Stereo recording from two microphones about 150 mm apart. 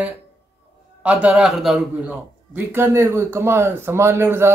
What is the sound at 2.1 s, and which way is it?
A man's voice, 15° right (ahead or behind).